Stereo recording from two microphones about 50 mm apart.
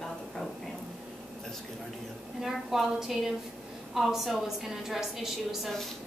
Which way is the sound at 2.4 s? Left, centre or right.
Centre.